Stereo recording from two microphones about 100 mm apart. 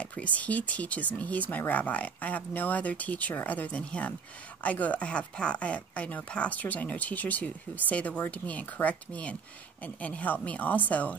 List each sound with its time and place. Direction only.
0.0 s speech: 15° left (ahead or behind)